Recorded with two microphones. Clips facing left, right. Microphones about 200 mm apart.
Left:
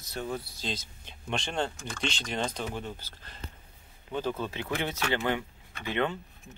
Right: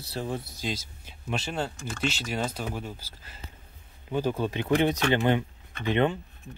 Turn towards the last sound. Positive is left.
turn(degrees=-20)  # may be behind; listen again after turning